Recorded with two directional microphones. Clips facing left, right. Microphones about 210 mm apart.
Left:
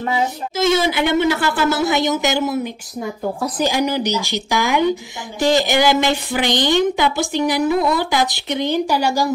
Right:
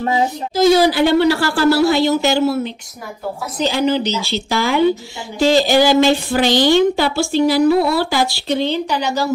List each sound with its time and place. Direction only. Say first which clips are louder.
0.7 s speech: right 5 dB; 20° left (ahead or behind)
3.5 s speech: right 4 dB; 10° left (ahead or behind)